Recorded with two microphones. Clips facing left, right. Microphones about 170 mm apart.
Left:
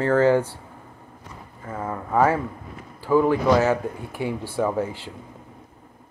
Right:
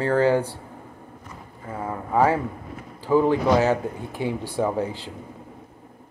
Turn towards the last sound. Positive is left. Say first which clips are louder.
# even
turn(degrees=-15)  # may be behind; listen again after turning